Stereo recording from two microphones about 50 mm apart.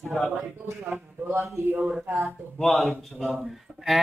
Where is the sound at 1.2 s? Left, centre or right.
Right.